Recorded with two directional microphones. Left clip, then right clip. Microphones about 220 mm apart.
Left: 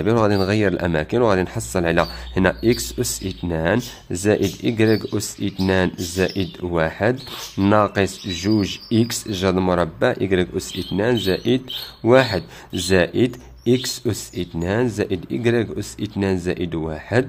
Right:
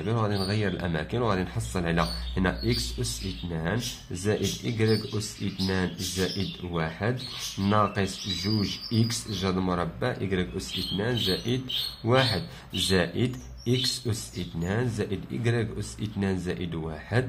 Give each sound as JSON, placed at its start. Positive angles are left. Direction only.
{"t": 0.0, "sound": "speech", "side_deg": 35}